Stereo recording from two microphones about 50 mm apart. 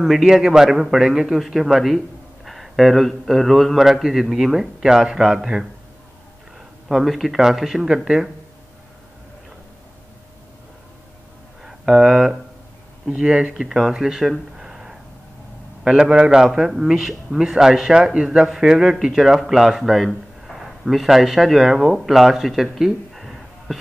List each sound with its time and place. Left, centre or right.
0.0 s a man's voice: centre
6.9 s a man's voice: centre
11.6 s speech: centre
13.6 s speech: centre